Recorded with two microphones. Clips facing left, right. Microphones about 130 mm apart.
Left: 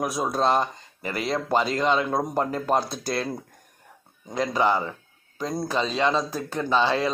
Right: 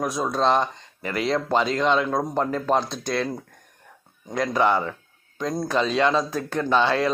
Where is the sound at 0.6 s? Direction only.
40° left (ahead or behind).